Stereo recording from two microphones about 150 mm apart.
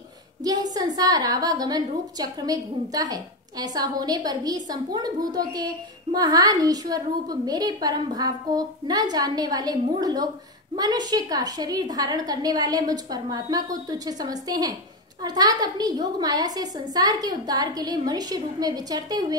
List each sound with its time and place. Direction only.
0.4 s a woman's voice: 25° right (ahead or behind)